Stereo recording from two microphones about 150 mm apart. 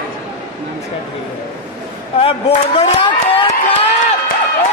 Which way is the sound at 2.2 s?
40° left (ahead or behind).